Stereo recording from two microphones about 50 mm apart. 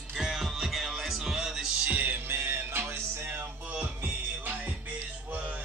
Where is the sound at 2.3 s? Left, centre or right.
Right.